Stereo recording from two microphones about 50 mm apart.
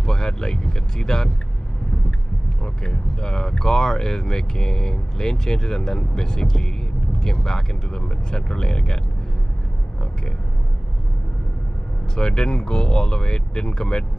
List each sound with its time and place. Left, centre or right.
0.0 s speech: centre
2.6 s speech: centre
12.2 s speech: centre